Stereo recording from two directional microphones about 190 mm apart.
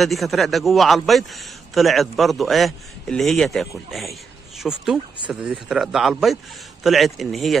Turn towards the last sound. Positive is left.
turn(degrees=0)  # may be behind; listen again after turning